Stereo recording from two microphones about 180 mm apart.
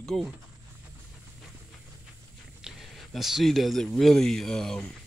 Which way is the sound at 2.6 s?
Centre (ahead or behind).